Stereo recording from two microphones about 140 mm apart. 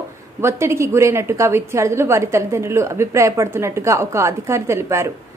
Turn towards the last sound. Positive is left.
turn(degrees=-20)  # may be behind; listen again after turning